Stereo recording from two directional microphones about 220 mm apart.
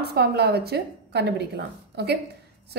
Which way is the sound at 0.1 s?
45° right (ahead or behind).